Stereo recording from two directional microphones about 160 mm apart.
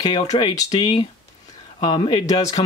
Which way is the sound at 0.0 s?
30° left (ahead or behind).